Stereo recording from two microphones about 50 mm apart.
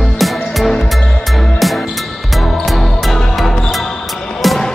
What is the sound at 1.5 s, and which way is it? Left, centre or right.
Music, centre.